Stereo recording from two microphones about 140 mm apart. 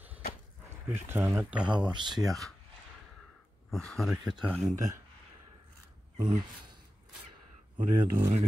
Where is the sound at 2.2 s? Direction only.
Centre (ahead or behind).